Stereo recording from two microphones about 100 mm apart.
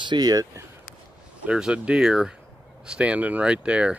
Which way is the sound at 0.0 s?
45° right (ahead or behind).